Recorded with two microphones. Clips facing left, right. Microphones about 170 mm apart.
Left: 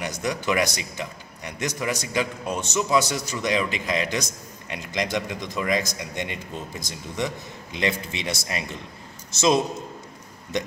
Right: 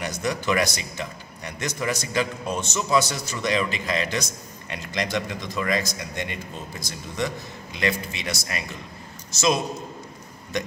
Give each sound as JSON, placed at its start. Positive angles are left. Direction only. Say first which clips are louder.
{"t": 0.0, "sound": "a man's voice", "louder": "even", "side_deg": 15}